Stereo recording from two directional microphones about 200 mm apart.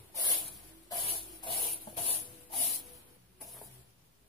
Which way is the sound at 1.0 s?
30° left (ahead or behind).